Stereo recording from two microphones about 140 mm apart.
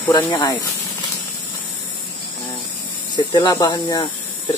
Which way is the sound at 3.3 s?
30° left (ahead or behind).